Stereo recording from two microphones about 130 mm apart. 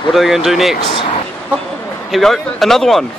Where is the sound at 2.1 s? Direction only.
Centre (ahead or behind).